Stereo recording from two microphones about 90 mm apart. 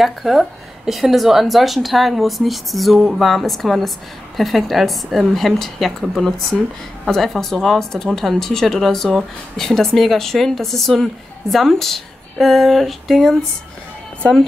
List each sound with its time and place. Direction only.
0.0 s speech: centre (ahead or behind)